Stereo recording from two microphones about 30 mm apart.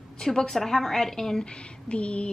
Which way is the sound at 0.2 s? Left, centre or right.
Centre.